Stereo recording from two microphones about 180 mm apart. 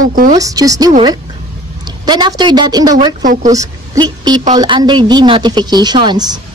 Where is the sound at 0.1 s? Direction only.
50° right (ahead or behind).